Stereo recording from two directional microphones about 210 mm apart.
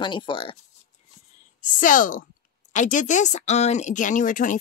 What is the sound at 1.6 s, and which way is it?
Speech, 40° left (ahead or behind).